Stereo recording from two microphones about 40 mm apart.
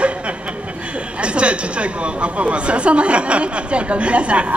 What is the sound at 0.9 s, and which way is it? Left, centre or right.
Speech, right.